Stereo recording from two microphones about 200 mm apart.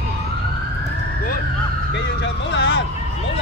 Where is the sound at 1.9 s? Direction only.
60° left (ahead or behind).